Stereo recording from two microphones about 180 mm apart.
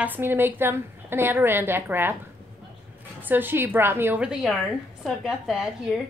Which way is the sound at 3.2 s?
10° right (ahead or behind).